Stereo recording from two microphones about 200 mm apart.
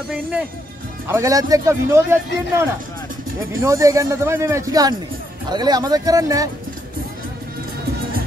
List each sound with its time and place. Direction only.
1.0 s speech: 15° right (ahead or behind)
3.6 s speech: 15° right (ahead or behind)